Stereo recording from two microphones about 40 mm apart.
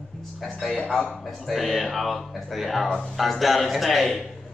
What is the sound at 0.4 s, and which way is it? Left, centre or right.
Speech, centre.